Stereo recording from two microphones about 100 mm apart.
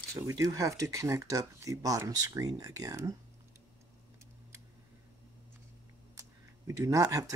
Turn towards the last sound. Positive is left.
turn(degrees=-35)  # may be behind; listen again after turning